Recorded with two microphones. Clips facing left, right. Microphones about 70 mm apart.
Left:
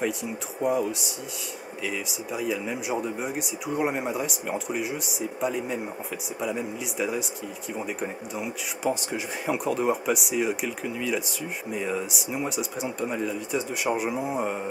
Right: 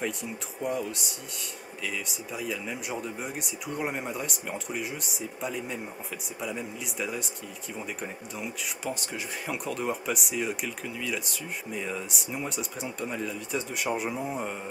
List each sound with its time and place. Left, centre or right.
0.0 s speech: centre